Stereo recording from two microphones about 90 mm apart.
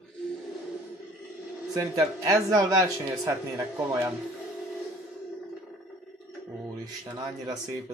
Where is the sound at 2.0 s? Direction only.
40° right (ahead or behind).